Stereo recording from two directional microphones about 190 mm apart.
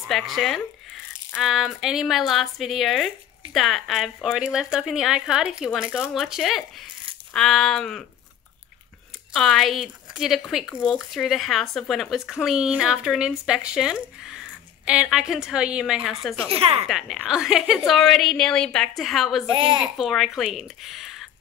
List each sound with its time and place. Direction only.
0.1 s speech: centre (ahead or behind)
9.3 s speech: centre (ahead or behind)
16.4 s speech: 30° right (ahead or behind)
16.8 s speech: centre (ahead or behind)
19.5 s a woman's voice: 25° right (ahead or behind)
19.8 s speech: centre (ahead or behind)